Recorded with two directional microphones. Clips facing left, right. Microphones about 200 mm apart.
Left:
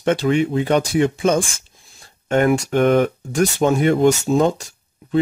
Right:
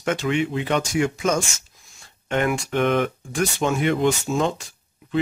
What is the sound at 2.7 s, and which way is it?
Speech, 45° left (ahead or behind).